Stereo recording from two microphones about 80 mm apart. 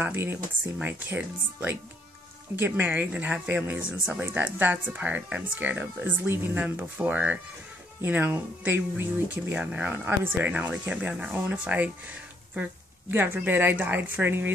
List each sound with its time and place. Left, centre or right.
0.0 s speech: right; by 4.3 s centre
4.3 s speech: right
13.1 s speech: right